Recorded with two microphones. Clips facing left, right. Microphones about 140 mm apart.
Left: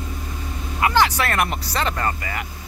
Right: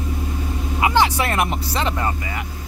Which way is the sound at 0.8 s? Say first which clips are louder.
Right 1 dB; 20° right (ahead or behind).